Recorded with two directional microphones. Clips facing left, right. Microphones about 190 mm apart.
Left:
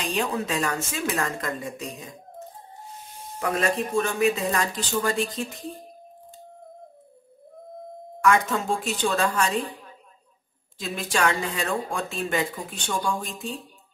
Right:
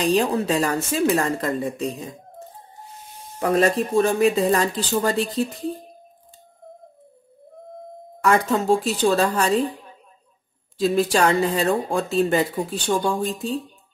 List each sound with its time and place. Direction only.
0.0 s speech: 35° right (ahead or behind)
3.3 s speech: 35° right (ahead or behind)
8.2 s speech: 35° right (ahead or behind)
10.8 s speech: 35° right (ahead or behind)